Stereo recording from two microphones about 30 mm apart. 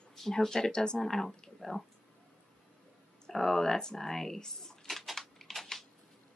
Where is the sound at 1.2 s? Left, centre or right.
Left.